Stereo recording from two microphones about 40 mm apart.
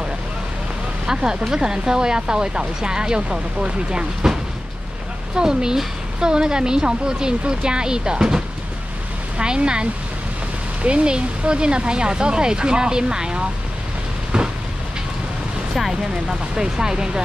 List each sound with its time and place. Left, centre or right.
1.0 s a woman's voice: centre
5.3 s a woman's voice: centre
9.4 s a woman's voice: right
15.9 s speech: centre